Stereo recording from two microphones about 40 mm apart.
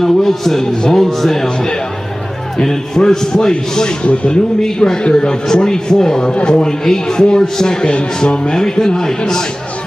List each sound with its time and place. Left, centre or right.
0.0 s a man's voice: centre
4.0 s speech: left
4.6 s a man's voice: centre